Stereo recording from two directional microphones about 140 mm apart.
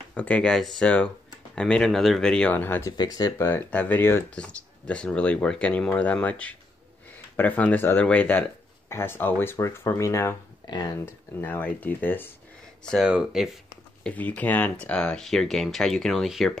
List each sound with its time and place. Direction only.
0.1 s speech: 10° left (ahead or behind)
3.0 s speech: 25° left (ahead or behind)
11.1 s speech: 15° left (ahead or behind)
12.8 s speech: 5° left (ahead or behind)
14.0 s speech: 10° left (ahead or behind)